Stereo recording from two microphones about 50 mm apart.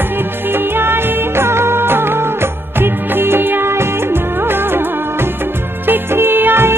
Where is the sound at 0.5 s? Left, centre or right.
Right.